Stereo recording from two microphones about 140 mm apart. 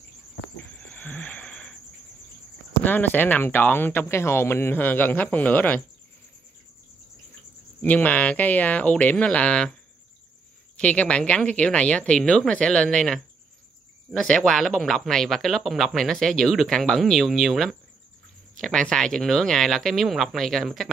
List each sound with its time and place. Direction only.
0.8 s a sound: 10° left (ahead or behind)
2.8 s speech: 15° left (ahead or behind)
7.8 s speech: 10° left (ahead or behind)
10.8 s speech: 10° left (ahead or behind)